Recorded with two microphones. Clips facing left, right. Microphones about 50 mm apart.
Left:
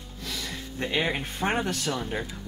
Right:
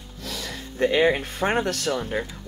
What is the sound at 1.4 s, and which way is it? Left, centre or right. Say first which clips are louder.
Speech: right 3 dB; right.